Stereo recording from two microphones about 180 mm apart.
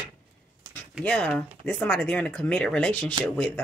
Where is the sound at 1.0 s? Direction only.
5° left (ahead or behind).